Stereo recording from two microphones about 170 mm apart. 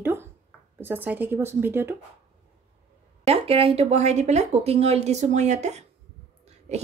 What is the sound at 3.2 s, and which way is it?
Speech, 35° right (ahead or behind).